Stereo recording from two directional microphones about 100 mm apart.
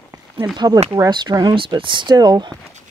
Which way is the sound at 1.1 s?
45° right (ahead or behind).